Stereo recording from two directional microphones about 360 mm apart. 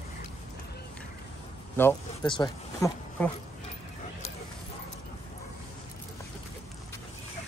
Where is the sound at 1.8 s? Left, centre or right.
Centre.